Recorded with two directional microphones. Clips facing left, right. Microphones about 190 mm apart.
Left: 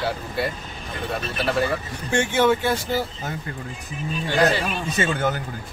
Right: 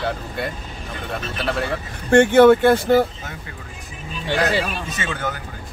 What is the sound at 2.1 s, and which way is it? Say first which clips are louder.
Speech: right 9 dB; 55° right (ahead or behind).